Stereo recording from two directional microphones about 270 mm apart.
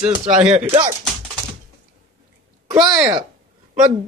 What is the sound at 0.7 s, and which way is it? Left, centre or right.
Speech, right.